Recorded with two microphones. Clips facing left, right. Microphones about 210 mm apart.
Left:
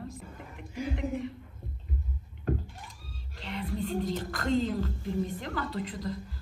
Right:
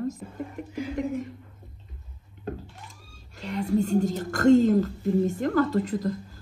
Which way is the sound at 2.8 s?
45° right (ahead or behind).